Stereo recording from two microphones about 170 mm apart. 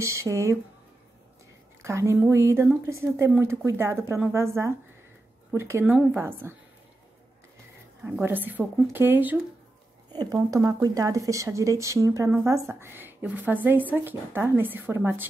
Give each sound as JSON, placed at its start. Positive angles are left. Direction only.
{"t": 0.0, "sound": "speech", "side_deg": -15}
{"t": 1.8, "sound": "speech", "side_deg": -15}
{"t": 8.0, "sound": "speech", "side_deg": -10}